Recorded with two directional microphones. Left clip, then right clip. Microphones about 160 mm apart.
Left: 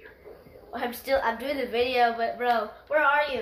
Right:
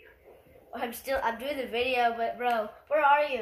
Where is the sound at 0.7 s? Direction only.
15° right (ahead or behind).